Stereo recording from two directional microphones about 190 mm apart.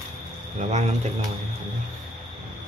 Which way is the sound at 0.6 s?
40° right (ahead or behind).